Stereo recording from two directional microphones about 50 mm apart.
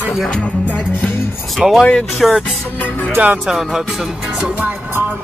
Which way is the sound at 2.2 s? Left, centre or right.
Centre.